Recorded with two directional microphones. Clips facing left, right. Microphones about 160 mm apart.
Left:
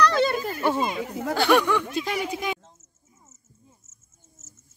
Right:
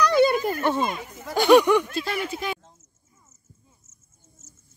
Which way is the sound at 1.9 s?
15° left (ahead or behind).